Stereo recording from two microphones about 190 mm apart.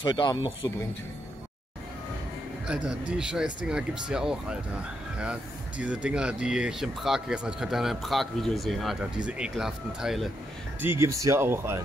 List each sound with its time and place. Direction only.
0.0 s speech: 25° left (ahead or behind)
2.6 s speech: 5° right (ahead or behind)
10.8 s speech: 15° right (ahead or behind)